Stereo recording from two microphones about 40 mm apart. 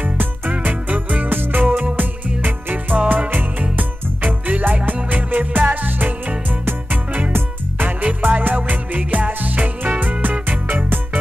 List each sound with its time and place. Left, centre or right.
0.0 s music: right
1.3 s music: right
8.0 s music: right